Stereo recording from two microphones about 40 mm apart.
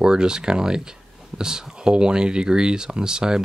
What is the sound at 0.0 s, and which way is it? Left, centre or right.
Speech, centre.